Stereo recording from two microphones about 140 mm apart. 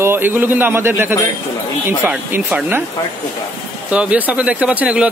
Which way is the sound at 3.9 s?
10° right (ahead or behind).